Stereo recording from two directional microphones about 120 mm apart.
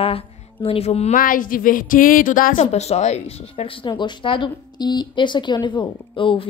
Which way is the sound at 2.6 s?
65° left (ahead or behind).